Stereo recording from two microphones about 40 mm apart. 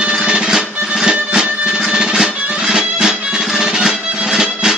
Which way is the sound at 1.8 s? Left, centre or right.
Centre.